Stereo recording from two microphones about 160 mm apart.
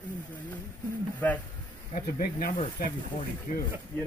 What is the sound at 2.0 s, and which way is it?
Speech, 65° left (ahead or behind).